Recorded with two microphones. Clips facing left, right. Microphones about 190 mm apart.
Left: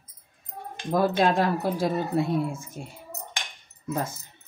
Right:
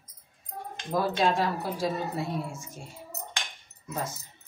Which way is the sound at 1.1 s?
55° left (ahead or behind).